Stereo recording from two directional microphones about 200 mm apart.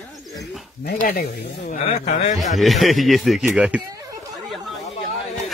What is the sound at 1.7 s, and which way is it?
Speech, 35° left (ahead or behind).